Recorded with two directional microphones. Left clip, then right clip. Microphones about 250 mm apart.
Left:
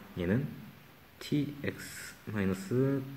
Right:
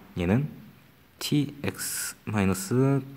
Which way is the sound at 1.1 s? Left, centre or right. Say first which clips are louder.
Right 6 dB; right.